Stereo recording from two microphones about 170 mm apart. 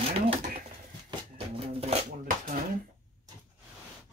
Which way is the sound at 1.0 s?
30° right (ahead or behind).